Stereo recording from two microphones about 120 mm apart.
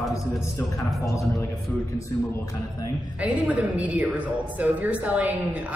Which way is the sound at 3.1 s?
10° right (ahead or behind).